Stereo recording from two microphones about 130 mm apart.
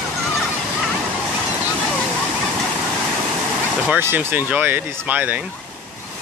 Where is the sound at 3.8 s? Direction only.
15° right (ahead or behind).